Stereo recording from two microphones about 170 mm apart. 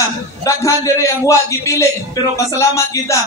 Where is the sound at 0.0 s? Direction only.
20° left (ahead or behind).